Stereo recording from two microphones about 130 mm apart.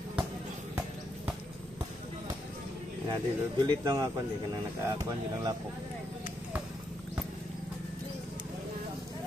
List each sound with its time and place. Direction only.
3.1 s speech: 30° right (ahead or behind)